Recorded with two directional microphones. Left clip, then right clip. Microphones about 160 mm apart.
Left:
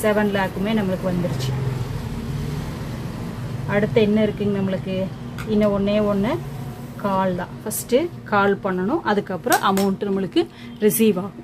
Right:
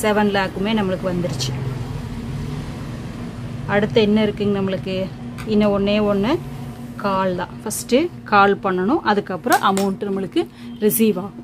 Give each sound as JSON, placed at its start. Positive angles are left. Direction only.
{"t": 0.0, "sound": "speech", "side_deg": -40}
{"t": 3.6, "sound": "a woman's voice", "side_deg": -40}